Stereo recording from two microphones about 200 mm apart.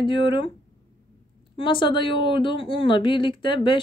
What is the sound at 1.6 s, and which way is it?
Speech, 25° left (ahead or behind).